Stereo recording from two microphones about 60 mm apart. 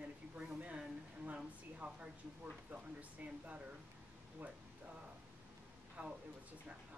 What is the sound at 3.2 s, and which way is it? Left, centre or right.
Speech, right.